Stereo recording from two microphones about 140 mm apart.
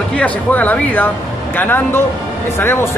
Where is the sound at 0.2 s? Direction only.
10° left (ahead or behind).